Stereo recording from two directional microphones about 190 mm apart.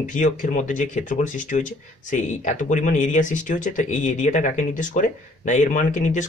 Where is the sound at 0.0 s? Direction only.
40° left (ahead or behind).